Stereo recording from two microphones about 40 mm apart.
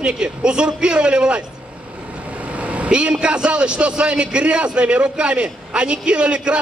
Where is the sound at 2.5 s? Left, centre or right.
Right.